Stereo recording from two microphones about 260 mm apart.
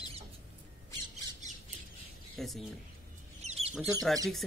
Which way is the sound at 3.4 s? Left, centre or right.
Right.